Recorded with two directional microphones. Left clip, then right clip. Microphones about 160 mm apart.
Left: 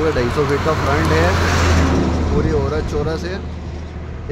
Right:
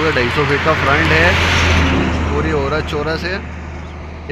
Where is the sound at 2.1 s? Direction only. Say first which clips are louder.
Right 1 dB; 35° right (ahead or behind).